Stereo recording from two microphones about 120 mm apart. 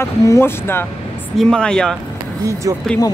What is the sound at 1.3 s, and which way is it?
Speech, 5° left (ahead or behind).